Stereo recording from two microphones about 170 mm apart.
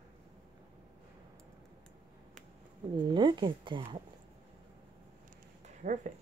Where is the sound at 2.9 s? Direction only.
25° right (ahead or behind).